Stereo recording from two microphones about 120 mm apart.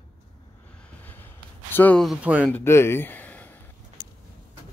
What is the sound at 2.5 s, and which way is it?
Speech, 20° left (ahead or behind).